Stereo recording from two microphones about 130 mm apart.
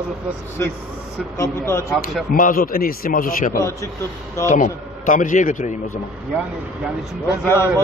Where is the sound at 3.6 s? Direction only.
25° left (ahead or behind).